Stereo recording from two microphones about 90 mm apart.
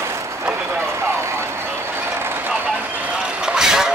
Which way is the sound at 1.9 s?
25° right (ahead or behind).